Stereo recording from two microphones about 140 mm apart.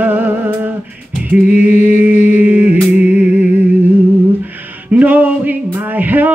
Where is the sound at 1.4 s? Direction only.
60° left (ahead or behind).